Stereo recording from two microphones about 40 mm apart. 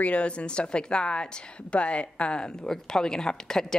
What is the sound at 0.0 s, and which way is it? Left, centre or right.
A woman's voice, left.